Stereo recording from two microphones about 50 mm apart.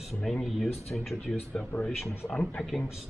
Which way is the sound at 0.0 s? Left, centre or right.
Centre.